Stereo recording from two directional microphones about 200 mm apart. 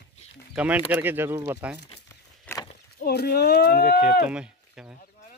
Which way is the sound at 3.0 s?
55° left (ahead or behind).